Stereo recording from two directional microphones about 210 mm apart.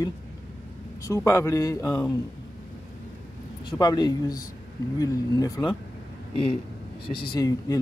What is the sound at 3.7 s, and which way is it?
Speech, 20° left (ahead or behind).